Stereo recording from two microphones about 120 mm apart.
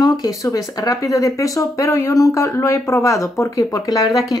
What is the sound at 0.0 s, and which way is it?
A woman's voice, 30° left (ahead or behind).